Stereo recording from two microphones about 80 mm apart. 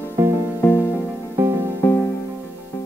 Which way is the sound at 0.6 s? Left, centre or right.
Left.